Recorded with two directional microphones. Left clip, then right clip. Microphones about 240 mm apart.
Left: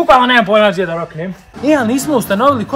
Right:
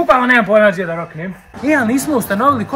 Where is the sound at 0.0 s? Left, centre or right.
Centre.